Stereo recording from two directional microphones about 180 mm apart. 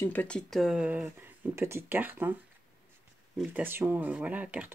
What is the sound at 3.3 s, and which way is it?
Speech, 10° right (ahead or behind).